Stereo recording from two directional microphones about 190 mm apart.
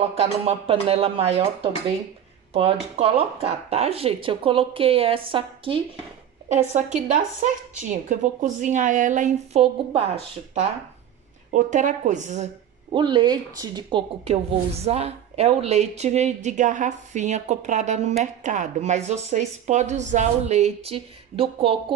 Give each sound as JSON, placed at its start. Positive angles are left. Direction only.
{"t": 0.1, "sound": "speech", "side_deg": -30}
{"t": 7.1, "sound": "speech", "side_deg": -40}
{"t": 12.9, "sound": "speech", "side_deg": -25}